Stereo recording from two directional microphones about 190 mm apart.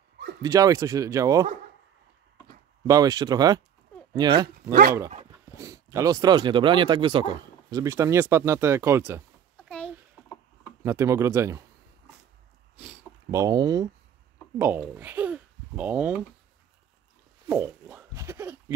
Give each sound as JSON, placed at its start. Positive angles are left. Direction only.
{"t": 0.4, "sound": "speech", "side_deg": -20}
{"t": 2.9, "sound": "speech", "side_deg": -20}
{"t": 10.8, "sound": "speech", "side_deg": -15}
{"t": 13.3, "sound": "a child's voice", "side_deg": -20}
{"t": 17.5, "sound": "pig", "side_deg": -10}